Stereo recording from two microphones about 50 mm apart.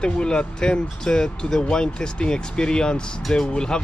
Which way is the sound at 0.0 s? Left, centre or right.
Centre.